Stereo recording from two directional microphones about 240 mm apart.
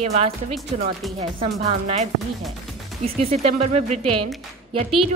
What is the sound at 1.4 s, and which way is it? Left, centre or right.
Speech, right.